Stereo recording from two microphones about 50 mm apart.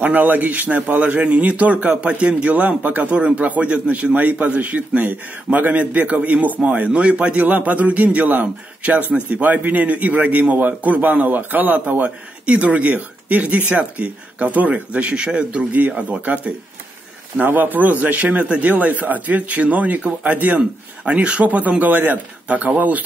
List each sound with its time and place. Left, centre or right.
0.0 s a man's voice: right
21.0 s a man's voice: right